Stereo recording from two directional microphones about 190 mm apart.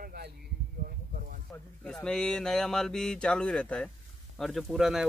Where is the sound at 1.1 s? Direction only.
45° right (ahead or behind).